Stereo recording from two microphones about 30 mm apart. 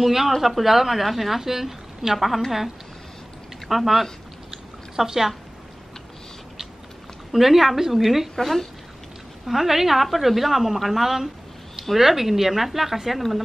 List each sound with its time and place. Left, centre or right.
0.0 s a woman's voice: centre
3.6 s speech: centre
4.9 s a woman's voice: centre
7.3 s a woman's voice: centre
9.5 s a woman's voice: centre